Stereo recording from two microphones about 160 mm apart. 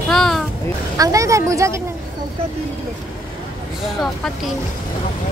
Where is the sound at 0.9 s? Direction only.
20° right (ahead or behind).